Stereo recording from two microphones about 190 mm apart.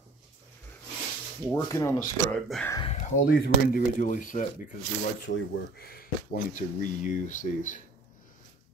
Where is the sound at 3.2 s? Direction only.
50° left (ahead or behind).